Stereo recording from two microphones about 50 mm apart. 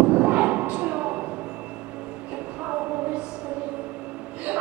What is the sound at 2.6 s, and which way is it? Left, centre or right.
Train, right.